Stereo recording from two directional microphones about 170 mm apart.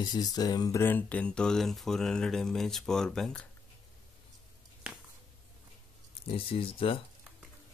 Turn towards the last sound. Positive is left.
turn(degrees=30)  # may be behind; listen again after turning